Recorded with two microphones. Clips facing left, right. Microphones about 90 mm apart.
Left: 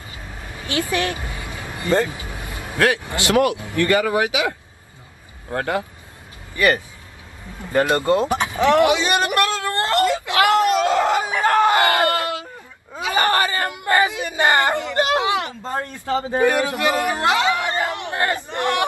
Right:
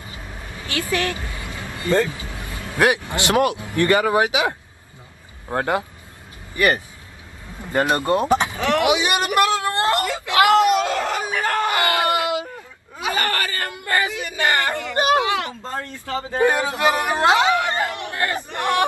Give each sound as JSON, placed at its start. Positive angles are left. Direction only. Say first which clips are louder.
{"t": 0.7, "sound": "vehicle", "louder": "left 1 dB", "side_deg": 20}
{"t": 3.1, "sound": "speech", "louder": "left 1 dB", "side_deg": -25}
{"t": 8.5, "sound": "speech", "louder": "left 5 dB", "side_deg": 20}
{"t": 8.8, "sound": "speech", "louder": "left 1 dB", "side_deg": -15}
{"t": 10.0, "sound": "speech", "louder": "left 6 dB", "side_deg": 20}
{"t": 10.3, "sound": "screaming", "louder": "right 3 dB", "side_deg": -15}
{"t": 10.9, "sound": "screaming", "louder": "left 5 dB", "side_deg": 20}
{"t": 12.1, "sound": "a sound", "louder": "right 2 dB", "side_deg": -15}
{"t": 13.1, "sound": "a sound", "louder": "left 5 dB", "side_deg": 20}
{"t": 16.4, "sound": "speech", "louder": "right 2 dB", "side_deg": -20}
{"t": 17.6, "sound": "a sound", "louder": "even", "side_deg": 20}
{"t": 18.6, "sound": "speech", "louder": "right 1 dB", "side_deg": -20}